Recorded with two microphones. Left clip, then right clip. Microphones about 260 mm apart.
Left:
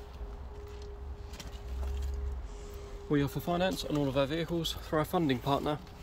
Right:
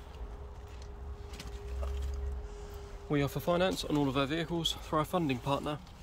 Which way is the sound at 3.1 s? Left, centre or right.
Centre.